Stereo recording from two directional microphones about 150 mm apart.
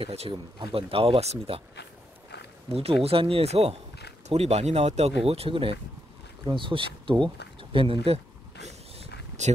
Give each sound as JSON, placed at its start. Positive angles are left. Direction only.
{"t": 0.0, "sound": "speech", "side_deg": -40}
{"t": 2.7, "sound": "speech", "side_deg": -40}
{"t": 8.6, "sound": "a sound", "side_deg": -45}
{"t": 9.4, "sound": "speech", "side_deg": -50}